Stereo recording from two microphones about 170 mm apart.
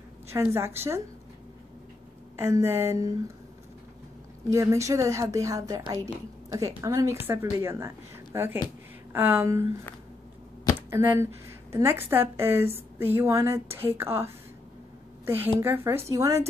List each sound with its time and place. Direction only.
0.3 s a woman's voice: 15° right (ahead or behind)
2.3 s a woman's voice: 15° right (ahead or behind)
4.5 s a woman's voice: 15° right (ahead or behind)
10.9 s a woman's voice: 15° right (ahead or behind)